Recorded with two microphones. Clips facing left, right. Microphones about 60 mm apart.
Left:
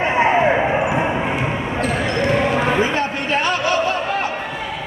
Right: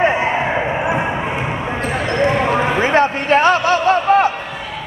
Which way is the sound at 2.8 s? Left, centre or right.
Right.